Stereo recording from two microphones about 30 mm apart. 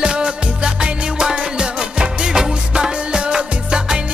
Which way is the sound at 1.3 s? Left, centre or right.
Right.